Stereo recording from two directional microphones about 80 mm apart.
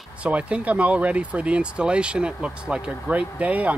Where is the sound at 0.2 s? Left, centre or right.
Centre.